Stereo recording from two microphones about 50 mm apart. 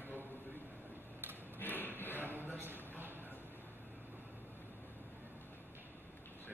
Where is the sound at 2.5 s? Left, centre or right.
Right.